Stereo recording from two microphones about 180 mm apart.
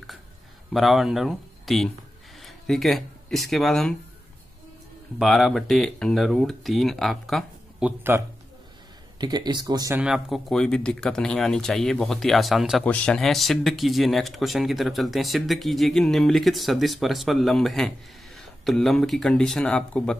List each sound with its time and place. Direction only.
0.7 s speech: centre (ahead or behind)
5.2 s speech: centre (ahead or behind)
8.1 s speech: 10° right (ahead or behind)
9.2 s speech: 25° right (ahead or behind)
9.9 s speech: 5° right (ahead or behind)